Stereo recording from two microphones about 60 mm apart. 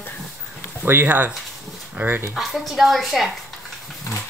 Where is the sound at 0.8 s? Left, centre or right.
Right.